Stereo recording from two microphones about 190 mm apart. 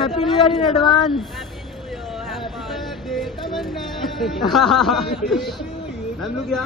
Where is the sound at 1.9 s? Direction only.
Centre (ahead or behind).